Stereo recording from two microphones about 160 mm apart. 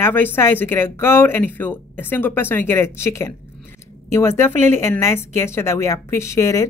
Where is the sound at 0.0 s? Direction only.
10° left (ahead or behind).